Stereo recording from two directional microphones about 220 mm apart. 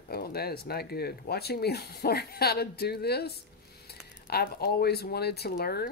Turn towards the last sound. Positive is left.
turn(degrees=45)  # may be behind; listen again after turning